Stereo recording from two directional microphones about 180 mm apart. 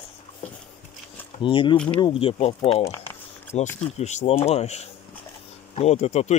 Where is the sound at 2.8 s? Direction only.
15° left (ahead or behind).